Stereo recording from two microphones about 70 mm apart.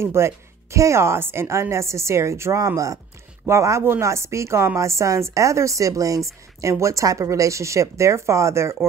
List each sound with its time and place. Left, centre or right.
0.0 s speech: right